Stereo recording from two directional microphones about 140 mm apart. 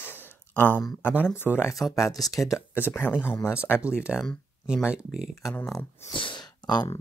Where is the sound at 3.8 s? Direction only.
10° right (ahead or behind).